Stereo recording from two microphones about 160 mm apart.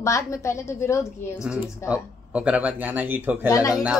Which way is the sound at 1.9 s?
5° right (ahead or behind).